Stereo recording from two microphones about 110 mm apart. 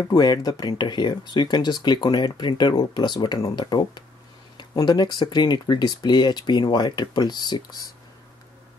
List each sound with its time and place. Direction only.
0.1 s speech: 40° left (ahead or behind)